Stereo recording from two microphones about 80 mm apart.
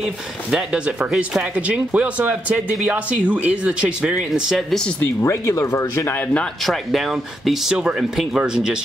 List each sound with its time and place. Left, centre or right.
0.5 s speech: centre
1.7 s speech: centre
4.3 s speech: centre
5.0 s speech: left
6.6 s speech: centre